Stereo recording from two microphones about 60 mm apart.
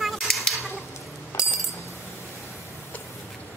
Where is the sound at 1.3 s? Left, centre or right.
Left.